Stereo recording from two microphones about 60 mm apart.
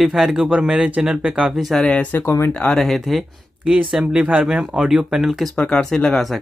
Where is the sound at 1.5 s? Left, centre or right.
Centre.